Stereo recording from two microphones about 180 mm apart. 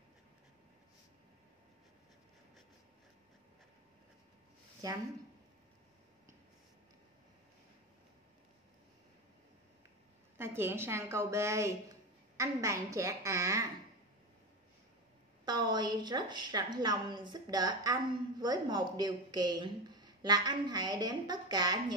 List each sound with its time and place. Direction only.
4.8 s a woman's voice: 20° right (ahead or behind)
10.3 s a woman's voice: 15° right (ahead or behind)
15.4 s a woman's voice: 25° right (ahead or behind)